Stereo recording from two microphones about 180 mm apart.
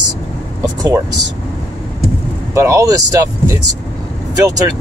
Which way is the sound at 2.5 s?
15° right (ahead or behind).